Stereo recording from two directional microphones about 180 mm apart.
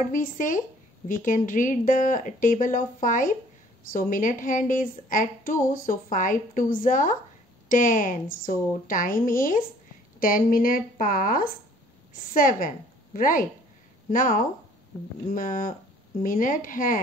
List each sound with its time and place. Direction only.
0.0 s a woman's voice: 45° left (ahead or behind)